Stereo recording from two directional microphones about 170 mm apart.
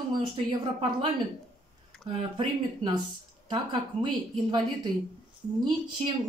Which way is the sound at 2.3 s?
25° right (ahead or behind).